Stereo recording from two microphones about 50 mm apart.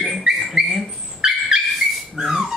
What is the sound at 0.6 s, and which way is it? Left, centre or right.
Dog, centre.